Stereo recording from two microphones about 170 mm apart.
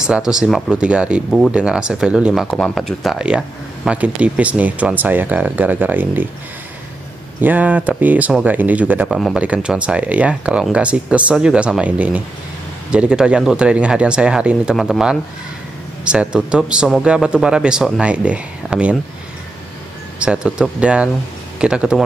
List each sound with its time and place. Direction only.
0.0 s speech: 5° right (ahead or behind)
7.4 s speech: 10° right (ahead or behind)
20.2 s speech: 5° right (ahead or behind)